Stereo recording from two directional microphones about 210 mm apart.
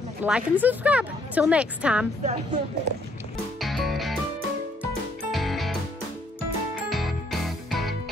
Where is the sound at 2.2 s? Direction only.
30° right (ahead or behind).